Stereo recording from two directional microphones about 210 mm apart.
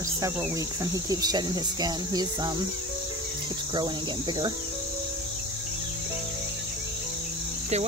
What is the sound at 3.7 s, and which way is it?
Cricket, 20° right (ahead or behind).